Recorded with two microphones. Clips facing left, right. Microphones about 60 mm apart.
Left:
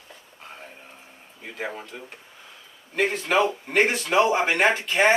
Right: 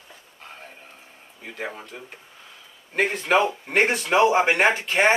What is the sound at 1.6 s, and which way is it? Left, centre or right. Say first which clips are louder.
Speech: left 1 dB; centre.